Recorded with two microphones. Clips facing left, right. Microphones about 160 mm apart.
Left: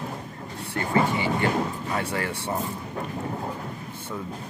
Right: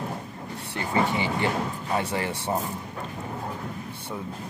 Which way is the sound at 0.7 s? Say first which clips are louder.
Left 2 dB; 25° right (ahead or behind).